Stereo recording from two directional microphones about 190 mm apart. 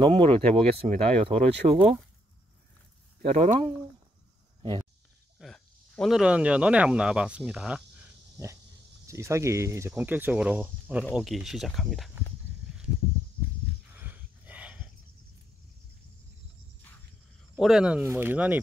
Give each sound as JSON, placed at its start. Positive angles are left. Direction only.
{"t": 0.0, "sound": "speech", "side_deg": -30}
{"t": 3.2, "sound": "speech", "side_deg": -40}
{"t": 5.4, "sound": "speech", "side_deg": 0}
{"t": 9.0, "sound": "speech", "side_deg": -15}
{"t": 13.9, "sound": "a sound", "side_deg": -10}
{"t": 17.6, "sound": "speech", "side_deg": 0}